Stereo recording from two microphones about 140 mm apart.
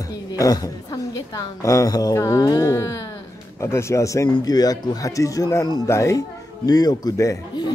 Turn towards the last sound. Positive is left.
turn(degrees=25)  # may be behind; listen again after turning